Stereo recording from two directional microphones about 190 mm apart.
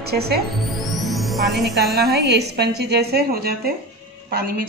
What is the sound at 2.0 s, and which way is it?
A woman's voice, 60° right (ahead or behind).